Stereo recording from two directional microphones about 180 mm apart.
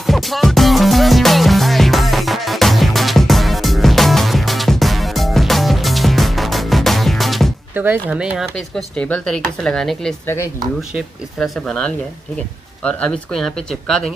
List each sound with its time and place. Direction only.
0.0 s music: centre (ahead or behind)
7.7 s speech: 10° right (ahead or behind)
12.8 s speech: 5° left (ahead or behind)